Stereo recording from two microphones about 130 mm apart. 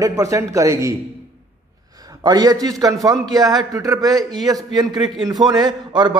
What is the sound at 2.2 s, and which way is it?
A man's voice, 30° right (ahead or behind).